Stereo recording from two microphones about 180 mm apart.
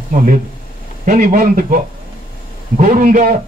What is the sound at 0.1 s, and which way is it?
A man's voice, 45° right (ahead or behind).